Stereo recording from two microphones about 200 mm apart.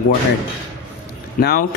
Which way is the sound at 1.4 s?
50° left (ahead or behind).